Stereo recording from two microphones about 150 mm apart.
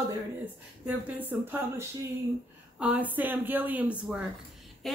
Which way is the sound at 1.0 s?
10° right (ahead or behind).